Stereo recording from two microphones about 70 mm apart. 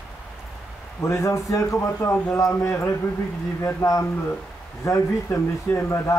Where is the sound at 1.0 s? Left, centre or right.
Left.